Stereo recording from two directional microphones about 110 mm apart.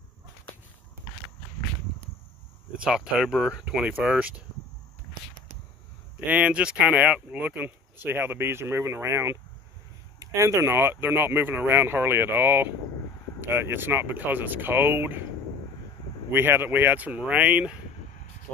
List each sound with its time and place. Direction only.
2.8 s speech: 5° right (ahead or behind)
6.1 s speech: 10° right (ahead or behind)
16.3 s speech: 20° right (ahead or behind)